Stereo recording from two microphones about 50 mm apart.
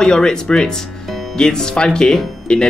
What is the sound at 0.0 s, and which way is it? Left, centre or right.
Speech, centre.